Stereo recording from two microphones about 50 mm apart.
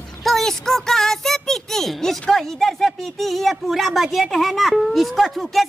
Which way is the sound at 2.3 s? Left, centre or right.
Centre.